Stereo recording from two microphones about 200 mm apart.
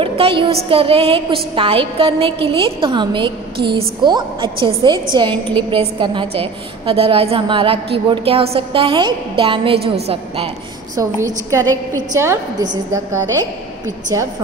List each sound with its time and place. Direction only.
0.0 s a woman's voice: 25° right (ahead or behind)
11.0 s a woman's voice: 15° right (ahead or behind)